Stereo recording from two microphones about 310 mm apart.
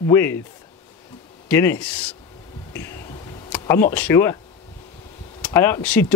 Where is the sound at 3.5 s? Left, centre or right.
Centre.